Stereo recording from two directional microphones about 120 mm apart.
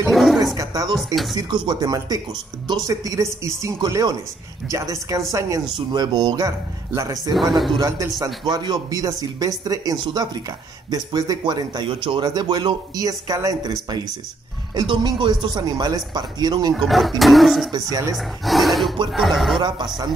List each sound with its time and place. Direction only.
0.1 s a sound: centre (ahead or behind)
0.6 s speech: 30° right (ahead or behind)
0.9 s speech: centre (ahead or behind)
1.3 s speech: 35° right (ahead or behind)
5.8 s speech: 35° right (ahead or behind)
7.3 s speech: centre (ahead or behind)
7.7 s speech: 30° right (ahead or behind)
16.7 s speech: centre (ahead or behind)
17.6 s speech: 30° right (ahead or behind)
18.1 s speech: centre (ahead or behind)